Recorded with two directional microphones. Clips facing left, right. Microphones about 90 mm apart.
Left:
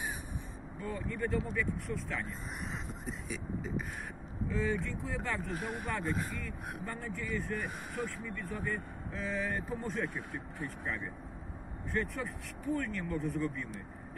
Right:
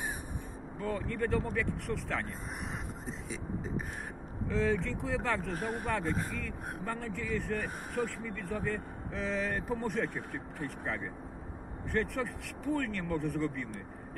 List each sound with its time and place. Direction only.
0.7 s speech: 70° right (ahead or behind)
3.1 s speech: 35° right (ahead or behind)
4.5 s speech: 90° right
5.5 s speech: 40° right (ahead or behind)
6.8 s speech: 80° right